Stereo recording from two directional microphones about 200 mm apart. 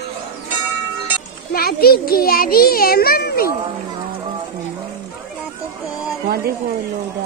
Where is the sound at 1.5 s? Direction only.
50° left (ahead or behind).